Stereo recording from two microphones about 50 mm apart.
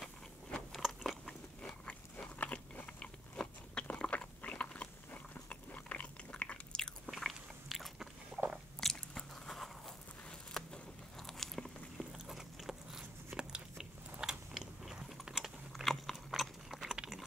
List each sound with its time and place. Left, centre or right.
0.5 s biting: centre
2.3 s biting: left
7.1 s biting: centre
10.6 s a sound: centre
11.1 s biting: centre
12.0 s biting: centre
15.3 s typing: centre
15.8 s biting: centre